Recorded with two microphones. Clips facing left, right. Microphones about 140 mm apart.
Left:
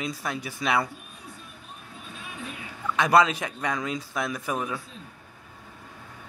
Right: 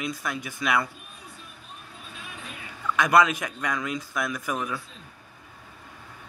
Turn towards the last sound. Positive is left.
turn(degrees=30)  # may be behind; listen again after turning